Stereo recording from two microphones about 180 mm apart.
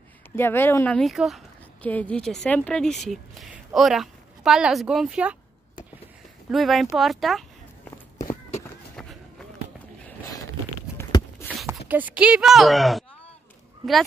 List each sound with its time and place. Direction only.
0.4 s speech: 10° left (ahead or behind); by 5.4 s 5° right (ahead or behind)
6.5 s speech: centre (ahead or behind)
11.0 s a sound: 20° left (ahead or behind)
11.9 s speech: 10° right (ahead or behind)